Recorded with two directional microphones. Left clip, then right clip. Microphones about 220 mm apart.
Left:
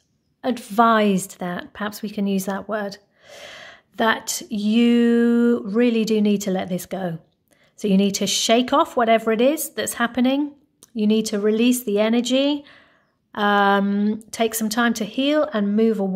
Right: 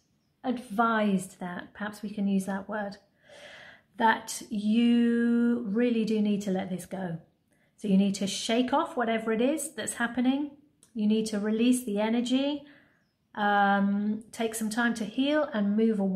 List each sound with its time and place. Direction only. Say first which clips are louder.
0.4 s a woman's voice: left 10 dB; 50° left (ahead or behind)